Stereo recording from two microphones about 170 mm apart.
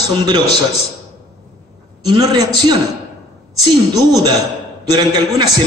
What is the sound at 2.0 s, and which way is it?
A man's voice, 20° right (ahead or behind).